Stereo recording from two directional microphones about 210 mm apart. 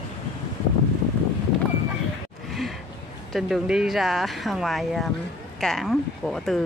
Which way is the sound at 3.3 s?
Centre (ahead or behind).